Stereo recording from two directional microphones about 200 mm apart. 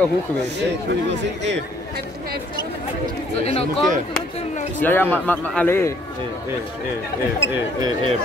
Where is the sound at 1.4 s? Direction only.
55° right (ahead or behind).